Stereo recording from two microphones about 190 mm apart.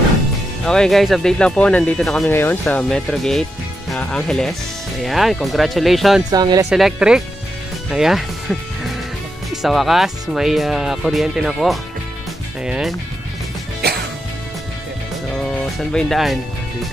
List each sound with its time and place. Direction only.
0.7 s speech: centre (ahead or behind)
6.3 s speech: 20° right (ahead or behind)
6.7 s speech: 5° right (ahead or behind)
13.8 s music: 55° right (ahead or behind)
15.9 s speech: centre (ahead or behind)